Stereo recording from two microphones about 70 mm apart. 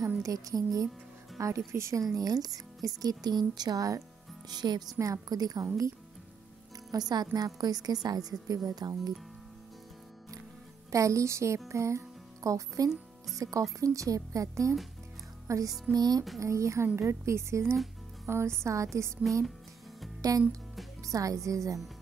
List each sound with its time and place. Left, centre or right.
0.2 s speech: right
1.7 s speech: right
2.1 s speech: right
4.5 s a woman's voice: right
5.0 s speech: right
6.9 s a woman's voice: right
10.9 s speech: right
15.4 s music: right
15.9 s speech: right
16.3 s speech: right
20.2 s music: right
21.0 s speech: right